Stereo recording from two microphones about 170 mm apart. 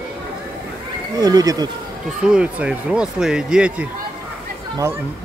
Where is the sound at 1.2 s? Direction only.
20° right (ahead or behind).